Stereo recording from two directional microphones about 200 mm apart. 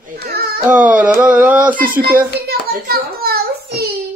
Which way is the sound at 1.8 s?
45° right (ahead or behind).